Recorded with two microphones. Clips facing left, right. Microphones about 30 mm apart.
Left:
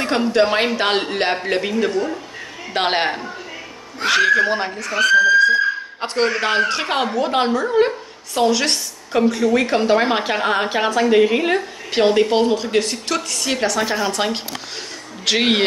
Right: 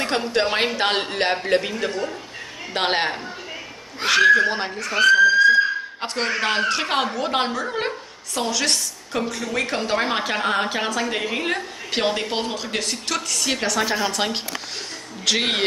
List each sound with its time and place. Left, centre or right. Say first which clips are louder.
0.0 s a man's voice: left 5 dB; centre
4.7 s speech: left 1 dB; centre
5.9 s a man's voice: left 4 dB; centre
8.4 s a woman's voice: left 5 dB; centre
15.2 s a woman's voice: left 4 dB; centre